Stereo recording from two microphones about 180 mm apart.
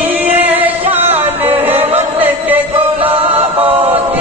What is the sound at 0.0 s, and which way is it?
Music, 10° right (ahead or behind).